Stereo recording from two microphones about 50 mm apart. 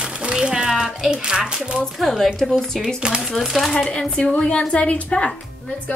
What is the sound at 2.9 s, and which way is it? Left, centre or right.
Speech, centre.